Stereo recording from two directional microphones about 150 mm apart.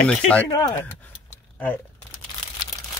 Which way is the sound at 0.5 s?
25° left (ahead or behind).